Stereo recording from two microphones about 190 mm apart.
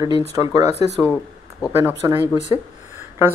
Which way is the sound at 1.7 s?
10° right (ahead or behind).